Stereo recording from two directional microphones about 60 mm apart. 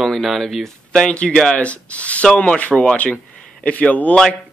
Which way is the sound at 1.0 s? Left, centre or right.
Centre.